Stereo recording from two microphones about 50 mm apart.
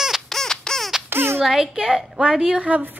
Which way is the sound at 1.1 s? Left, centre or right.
Right.